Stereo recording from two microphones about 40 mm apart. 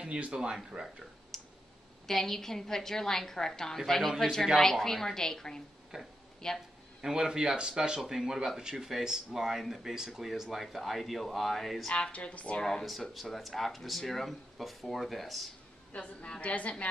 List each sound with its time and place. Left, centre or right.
0.3 s speech: right
1.3 s clicking: centre
2.0 s a woman's voice: centre
5.9 s speech: centre
6.4 s a woman's voice: centre
7.0 s speech: centre
8.0 s speech: centre
11.9 s speech: left
13.1 s speech: centre
16.0 s a woman's voice: centre
16.3 s speech: left